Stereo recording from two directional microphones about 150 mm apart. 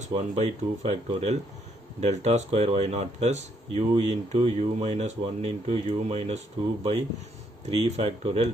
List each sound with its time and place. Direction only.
0.0 s speech: 45° right (ahead or behind)